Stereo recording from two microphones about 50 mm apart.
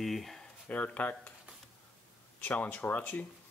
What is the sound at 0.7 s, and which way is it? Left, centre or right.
Speech, left.